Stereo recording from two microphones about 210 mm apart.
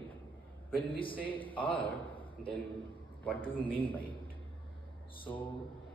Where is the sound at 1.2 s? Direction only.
10° left (ahead or behind).